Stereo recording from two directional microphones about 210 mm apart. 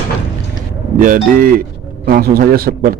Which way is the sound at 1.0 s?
40° right (ahead or behind).